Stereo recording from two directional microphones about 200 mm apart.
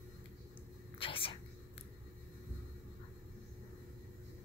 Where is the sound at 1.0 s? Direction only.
25° left (ahead or behind).